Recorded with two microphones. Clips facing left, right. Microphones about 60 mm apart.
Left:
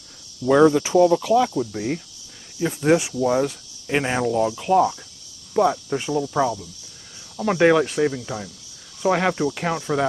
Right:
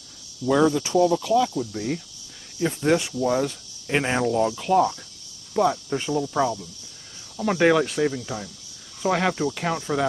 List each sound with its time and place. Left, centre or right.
0.5 s speech: left
2.6 s cricket: centre
3.8 s speech: centre
5.5 s cricket: centre